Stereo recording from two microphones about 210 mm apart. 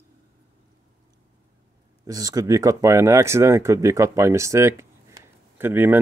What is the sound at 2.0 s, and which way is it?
Speech, 15° right (ahead or behind).